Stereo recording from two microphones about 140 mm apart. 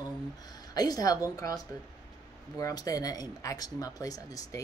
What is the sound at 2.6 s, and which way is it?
Speech, 25° left (ahead or behind).